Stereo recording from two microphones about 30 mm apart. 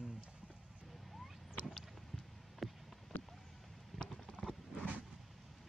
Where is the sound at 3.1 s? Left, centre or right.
Left.